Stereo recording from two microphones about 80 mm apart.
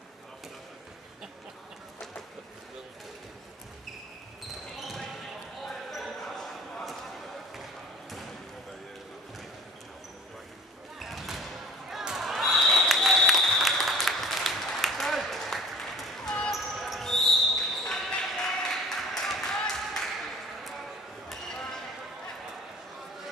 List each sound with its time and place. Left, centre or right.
4.7 s basketball bounce: centre
11.0 s basketball bounce: centre
11.9 s applause: centre
16.4 s basketball bounce: centre